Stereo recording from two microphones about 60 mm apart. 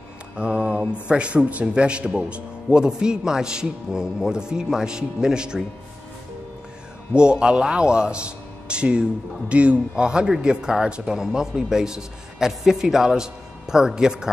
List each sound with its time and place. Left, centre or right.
0.4 s a man's voice: centre
7.2 s a man's voice: centre